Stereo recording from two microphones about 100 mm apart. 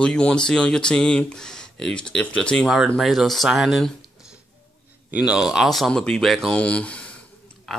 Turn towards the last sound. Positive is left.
turn(degrees=0)  # may be behind; listen again after turning